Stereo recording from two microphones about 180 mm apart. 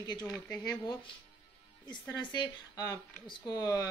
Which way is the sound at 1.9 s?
25° left (ahead or behind).